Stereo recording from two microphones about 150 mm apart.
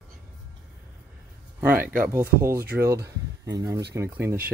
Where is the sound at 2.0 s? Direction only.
15° right (ahead or behind).